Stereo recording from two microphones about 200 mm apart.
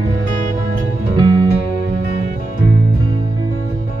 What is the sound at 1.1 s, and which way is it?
Music, 25° right (ahead or behind).